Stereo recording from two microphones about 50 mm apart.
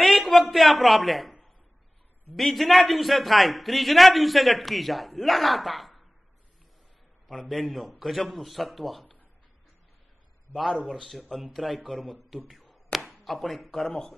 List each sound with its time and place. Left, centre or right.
0.0 s a man's voice: centre
2.3 s a man's voice: centre
7.4 s a man's voice: centre
10.5 s a man's voice: left
11.1 s a man's voice: centre